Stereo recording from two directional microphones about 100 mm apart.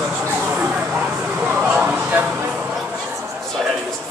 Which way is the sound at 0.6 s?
15° right (ahead or behind).